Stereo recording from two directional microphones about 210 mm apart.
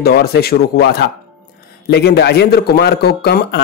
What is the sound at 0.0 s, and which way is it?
Speech, 50° left (ahead or behind).